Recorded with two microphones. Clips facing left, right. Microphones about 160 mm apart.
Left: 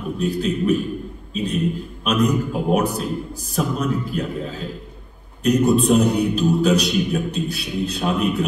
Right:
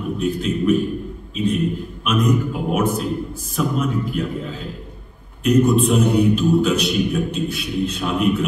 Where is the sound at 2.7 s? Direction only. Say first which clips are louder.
Right 1 dB; 35° left (ahead or behind).